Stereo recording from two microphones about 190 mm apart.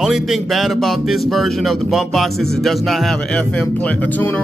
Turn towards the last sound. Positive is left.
turn(degrees=10)  # may be behind; listen again after turning